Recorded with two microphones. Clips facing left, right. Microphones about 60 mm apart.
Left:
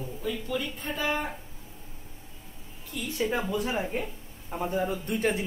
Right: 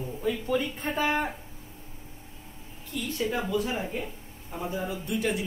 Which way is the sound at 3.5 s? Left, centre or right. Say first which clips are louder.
Even; left.